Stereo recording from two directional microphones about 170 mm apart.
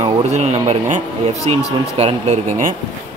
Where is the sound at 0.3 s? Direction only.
40° right (ahead or behind).